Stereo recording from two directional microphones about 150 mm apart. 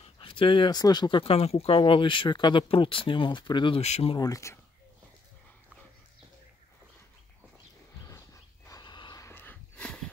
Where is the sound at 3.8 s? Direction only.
45° left (ahead or behind).